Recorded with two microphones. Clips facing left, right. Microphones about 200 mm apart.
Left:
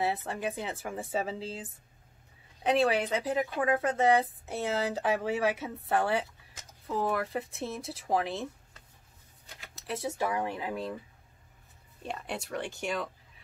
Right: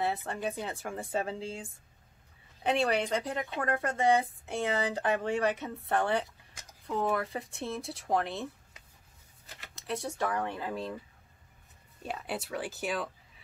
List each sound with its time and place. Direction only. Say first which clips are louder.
0.0 s speech: left 1 dB; 5° left (ahead or behind)
9.6 s speech: even; centre (ahead or behind)
12.0 s speech: right 1 dB; 5° right (ahead or behind)